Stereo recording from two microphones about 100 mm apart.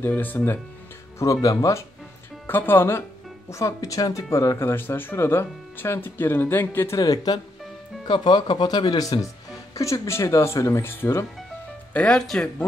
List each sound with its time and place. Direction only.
0.0 s speech: 20° left (ahead or behind)
1.2 s speech: 35° left (ahead or behind)
2.4 s speech: 20° left (ahead or behind)
7.0 s speech: 40° left (ahead or behind)
8.1 s speech: 50° left (ahead or behind); by 11.2 s 25° left (ahead or behind)
11.9 s speech: 10° left (ahead or behind)